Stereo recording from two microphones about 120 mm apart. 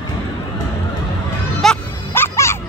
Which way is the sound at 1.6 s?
Centre (ahead or behind).